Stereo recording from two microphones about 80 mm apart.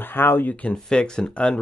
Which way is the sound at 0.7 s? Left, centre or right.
Centre.